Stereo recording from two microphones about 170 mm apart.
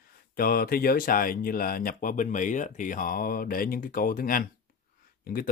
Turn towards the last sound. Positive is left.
turn(degrees=60)  # may be behind; listen again after turning